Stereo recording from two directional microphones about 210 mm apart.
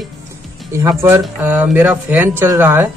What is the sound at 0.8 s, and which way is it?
Speech, 10° right (ahead or behind).